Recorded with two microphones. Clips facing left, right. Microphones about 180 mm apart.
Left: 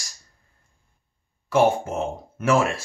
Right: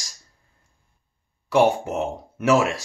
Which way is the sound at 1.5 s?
15° right (ahead or behind).